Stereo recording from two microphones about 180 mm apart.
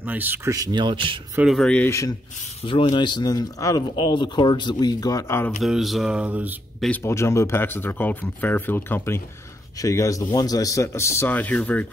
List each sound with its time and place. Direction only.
0.1 s speech: 10° right (ahead or behind)
1.3 s speech: 5° right (ahead or behind); by 2.1 s 15° left (ahead or behind)
2.6 s speech: 30° left (ahead or behind)
5.6 s speech: centre (ahead or behind)
6.9 s speech: 15° left (ahead or behind)